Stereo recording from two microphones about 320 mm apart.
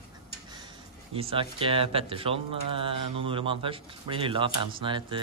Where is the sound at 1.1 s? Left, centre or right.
Centre.